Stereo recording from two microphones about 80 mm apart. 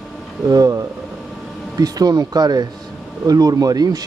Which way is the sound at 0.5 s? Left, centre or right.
Right.